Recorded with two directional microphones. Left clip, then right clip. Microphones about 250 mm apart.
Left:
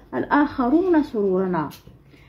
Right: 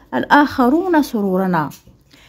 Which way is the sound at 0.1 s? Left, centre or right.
Right.